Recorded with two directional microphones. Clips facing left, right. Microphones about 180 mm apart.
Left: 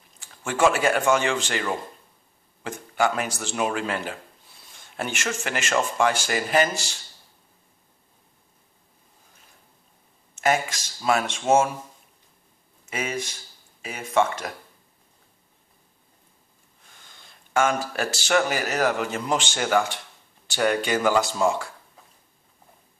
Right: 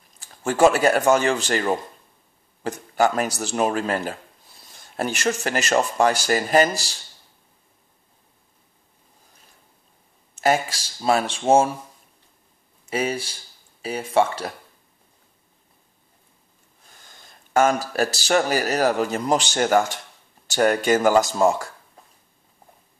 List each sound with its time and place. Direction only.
0.2 s speech: 40° right (ahead or behind)
10.3 s speech: 35° right (ahead or behind)
12.9 s speech: 35° right (ahead or behind)
17.2 s speech: 40° right (ahead or behind)